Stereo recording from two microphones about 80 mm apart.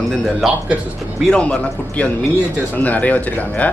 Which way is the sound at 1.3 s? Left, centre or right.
Centre.